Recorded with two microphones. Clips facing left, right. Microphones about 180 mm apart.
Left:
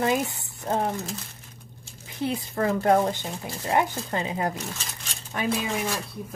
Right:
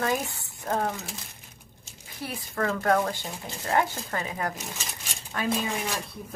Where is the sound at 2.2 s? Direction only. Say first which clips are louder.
Left 4 dB; 20° left (ahead or behind).